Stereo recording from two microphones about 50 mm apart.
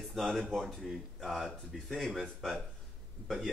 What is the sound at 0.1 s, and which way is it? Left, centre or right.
Speech, centre.